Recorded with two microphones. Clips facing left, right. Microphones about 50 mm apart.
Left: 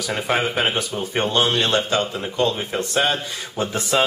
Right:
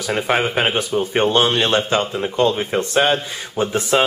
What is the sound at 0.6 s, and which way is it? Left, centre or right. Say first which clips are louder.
Speech: right 4 dB; right.